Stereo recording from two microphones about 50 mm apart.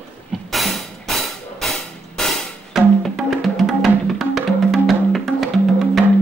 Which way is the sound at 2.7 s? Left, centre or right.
Centre.